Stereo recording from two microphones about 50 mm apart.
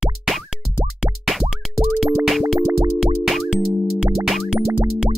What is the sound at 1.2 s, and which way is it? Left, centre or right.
Plop, centre.